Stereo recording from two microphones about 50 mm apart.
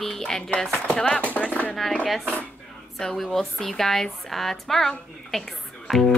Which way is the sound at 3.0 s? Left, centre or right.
Centre.